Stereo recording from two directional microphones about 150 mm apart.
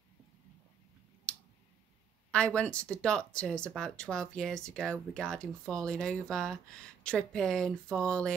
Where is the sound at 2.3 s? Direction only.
5° left (ahead or behind).